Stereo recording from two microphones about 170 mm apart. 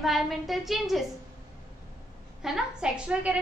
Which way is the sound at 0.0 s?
Centre (ahead or behind).